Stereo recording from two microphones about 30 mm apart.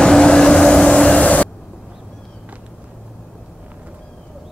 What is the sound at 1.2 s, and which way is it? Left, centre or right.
Vehicle, left.